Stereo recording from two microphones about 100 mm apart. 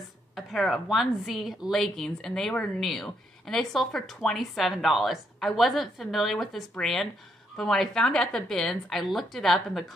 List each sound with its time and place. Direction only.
0.5 s a woman's voice: centre (ahead or behind)